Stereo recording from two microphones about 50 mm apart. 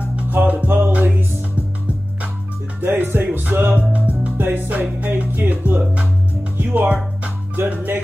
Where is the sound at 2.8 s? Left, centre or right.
Right.